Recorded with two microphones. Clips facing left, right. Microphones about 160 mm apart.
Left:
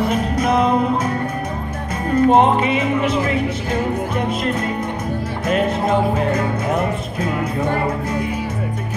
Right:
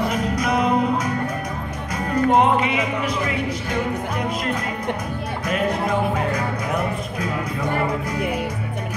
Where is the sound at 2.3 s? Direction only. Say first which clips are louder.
Left 3 dB; 25° left (ahead or behind).